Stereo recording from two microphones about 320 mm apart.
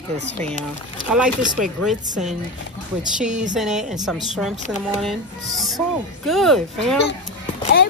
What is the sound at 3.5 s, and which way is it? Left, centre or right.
Speech, centre.